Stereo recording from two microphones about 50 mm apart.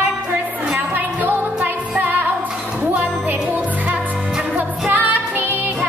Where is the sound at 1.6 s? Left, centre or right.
Right.